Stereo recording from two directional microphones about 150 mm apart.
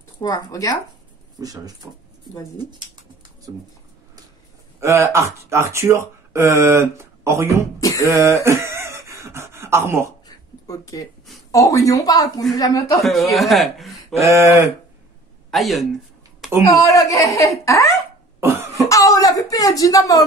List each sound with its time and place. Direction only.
0.2 s speech: 25° left (ahead or behind)
1.4 s speech: 25° right (ahead or behind)
3.5 s speech: 20° right (ahead or behind)
4.7 s speech: 20° right (ahead or behind)
7.8 s a sound: 20° left (ahead or behind)
8.1 s a sound: 20° right (ahead or behind)
10.2 s a sound: 25° left (ahead or behind)
11.5 s speech: 20° left (ahead or behind)
13.0 s speech: centre (ahead or behind)
14.2 s speech: 20° right (ahead or behind)
15.5 s speech: centre (ahead or behind)
16.8 s speech: 20° left (ahead or behind)
18.4 s cough: 15° right (ahead or behind)
18.8 s a sound: 20° left (ahead or behind)